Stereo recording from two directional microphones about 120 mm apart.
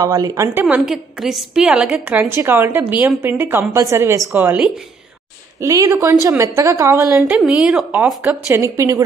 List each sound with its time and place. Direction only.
0.0 s a woman's voice: 30° right (ahead or behind)
0.6 s a woman's voice: 15° right (ahead or behind)
0.8 s a woman's voice: 5° right (ahead or behind)
5.6 s a woman's voice: 25° right (ahead or behind)
7.3 s a woman's voice: 5° right (ahead or behind)
8.2 s a woman's voice: 20° right (ahead or behind)